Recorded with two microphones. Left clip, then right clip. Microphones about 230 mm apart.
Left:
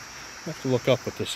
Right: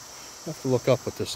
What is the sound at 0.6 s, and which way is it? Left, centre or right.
Speech, centre.